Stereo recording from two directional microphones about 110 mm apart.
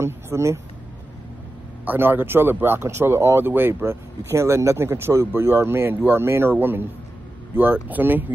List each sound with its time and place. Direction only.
0.0 s speech: 25° right (ahead or behind)
1.9 s speech: 20° right (ahead or behind)